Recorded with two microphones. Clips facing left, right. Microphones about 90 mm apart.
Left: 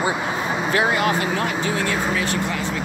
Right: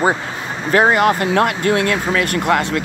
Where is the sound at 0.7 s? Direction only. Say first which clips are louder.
Right 8 dB; 50° right (ahead or behind).